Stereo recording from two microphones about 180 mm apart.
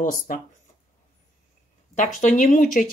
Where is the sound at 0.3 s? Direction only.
45° left (ahead or behind).